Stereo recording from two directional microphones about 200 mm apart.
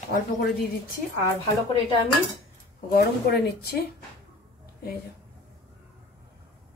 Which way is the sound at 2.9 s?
55° left (ahead or behind).